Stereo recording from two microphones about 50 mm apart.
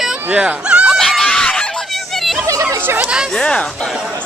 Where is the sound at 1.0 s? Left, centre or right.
Centre.